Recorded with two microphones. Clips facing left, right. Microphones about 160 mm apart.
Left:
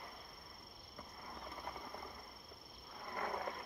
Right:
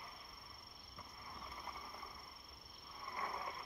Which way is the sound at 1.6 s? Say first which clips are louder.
Left 4 dB; 50° left (ahead or behind).